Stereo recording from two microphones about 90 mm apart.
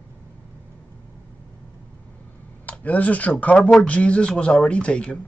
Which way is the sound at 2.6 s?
15° left (ahead or behind).